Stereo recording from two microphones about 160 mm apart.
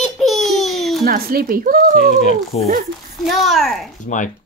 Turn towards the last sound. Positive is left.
turn(degrees=55)  # may be behind; listen again after turning